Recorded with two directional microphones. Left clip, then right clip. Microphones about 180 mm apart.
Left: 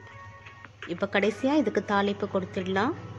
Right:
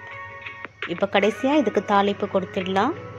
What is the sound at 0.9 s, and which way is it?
A woman's voice, 5° right (ahead or behind).